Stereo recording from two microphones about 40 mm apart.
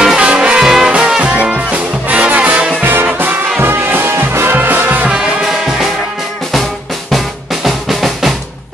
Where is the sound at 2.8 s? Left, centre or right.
Right.